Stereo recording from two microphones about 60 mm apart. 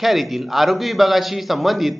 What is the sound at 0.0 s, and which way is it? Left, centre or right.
A man's voice, centre.